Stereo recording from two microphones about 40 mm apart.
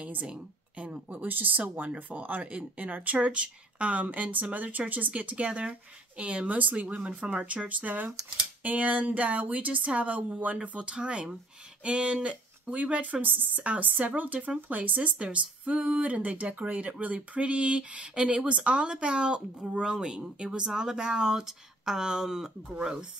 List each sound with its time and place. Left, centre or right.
0.0 s speech: right
1.2 s speech: right
1.6 s speech: right
2.0 s speech: right
12.7 s speech: right
15.1 s speech: right
15.6 s speech: right; by 22.5 s centre